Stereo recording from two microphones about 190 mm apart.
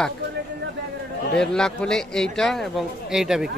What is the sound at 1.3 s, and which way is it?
Speech, 5° left (ahead or behind).